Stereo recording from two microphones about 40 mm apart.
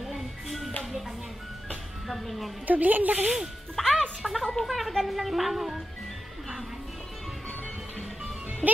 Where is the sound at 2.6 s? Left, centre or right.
Right.